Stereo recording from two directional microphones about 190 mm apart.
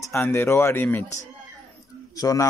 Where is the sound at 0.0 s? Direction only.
15° left (ahead or behind).